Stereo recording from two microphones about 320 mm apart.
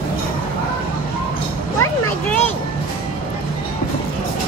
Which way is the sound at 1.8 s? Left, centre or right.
Centre.